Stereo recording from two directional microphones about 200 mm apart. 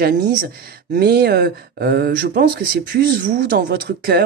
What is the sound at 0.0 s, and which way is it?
Speech, 50° right (ahead or behind).